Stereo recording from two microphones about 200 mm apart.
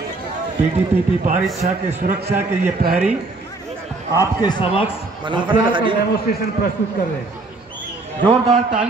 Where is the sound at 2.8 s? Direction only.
50° right (ahead or behind).